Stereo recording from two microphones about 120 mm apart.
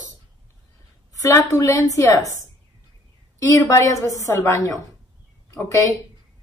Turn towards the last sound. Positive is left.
turn(degrees=25)  # may be behind; listen again after turning